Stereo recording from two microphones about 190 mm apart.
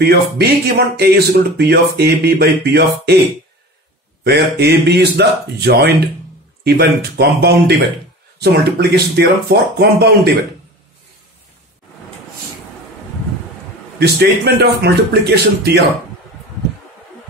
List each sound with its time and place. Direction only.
0.0 s speech: 60° right (ahead or behind)
4.2 s speech: 60° right (ahead or behind)
13.9 s speech: 60° right (ahead or behind)